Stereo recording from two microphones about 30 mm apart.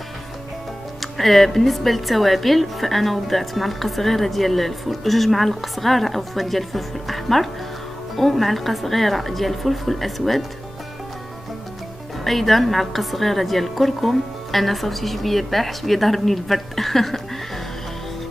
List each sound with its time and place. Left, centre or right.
1.1 s speech: centre
12.3 s speech: centre